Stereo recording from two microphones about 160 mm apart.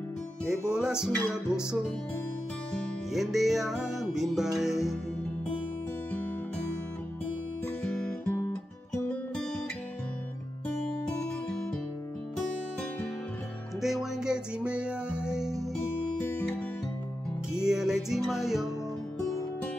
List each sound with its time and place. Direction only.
0.7 s music: 5° right (ahead or behind)
1.1 s music: 15° left (ahead or behind)
3.1 s music: centre (ahead or behind)
7.6 s music: 15° left (ahead or behind)
13.7 s music: centre (ahead or behind)
17.5 s music: 5° right (ahead or behind)